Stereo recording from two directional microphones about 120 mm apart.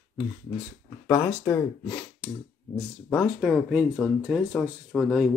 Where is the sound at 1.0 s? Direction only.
20° left (ahead or behind).